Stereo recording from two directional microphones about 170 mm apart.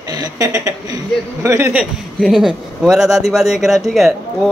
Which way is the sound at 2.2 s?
Centre (ahead or behind).